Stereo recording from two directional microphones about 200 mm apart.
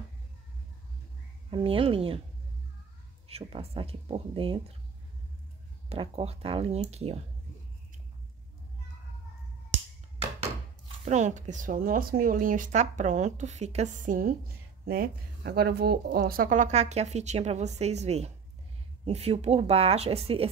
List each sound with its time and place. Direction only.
1.5 s speech: 25° right (ahead or behind)
3.3 s speech: 30° right (ahead or behind)
5.9 s speech: 30° right (ahead or behind)
11.1 s speech: 35° right (ahead or behind)